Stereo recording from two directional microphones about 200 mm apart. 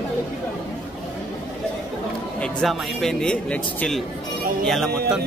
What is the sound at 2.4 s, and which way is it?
A man's voice, centre (ahead or behind).